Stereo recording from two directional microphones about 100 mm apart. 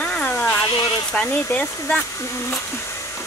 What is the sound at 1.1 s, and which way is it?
Speech, 15° left (ahead or behind).